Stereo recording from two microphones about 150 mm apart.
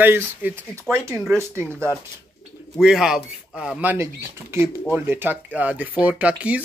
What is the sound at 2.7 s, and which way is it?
Speech, 5° right (ahead or behind).